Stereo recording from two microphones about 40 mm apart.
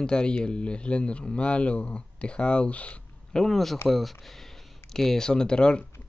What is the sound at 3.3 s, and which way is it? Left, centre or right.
Speech, centre.